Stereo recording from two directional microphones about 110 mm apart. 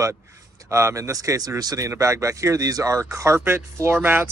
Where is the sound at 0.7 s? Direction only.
25° right (ahead or behind).